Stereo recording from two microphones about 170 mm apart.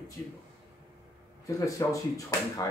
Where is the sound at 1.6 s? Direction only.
20° left (ahead or behind).